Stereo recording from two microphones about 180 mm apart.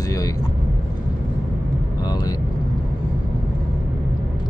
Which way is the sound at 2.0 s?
20° left (ahead or behind).